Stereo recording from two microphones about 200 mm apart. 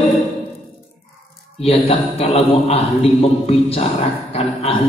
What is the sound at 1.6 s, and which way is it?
A man's voice, 30° left (ahead or behind).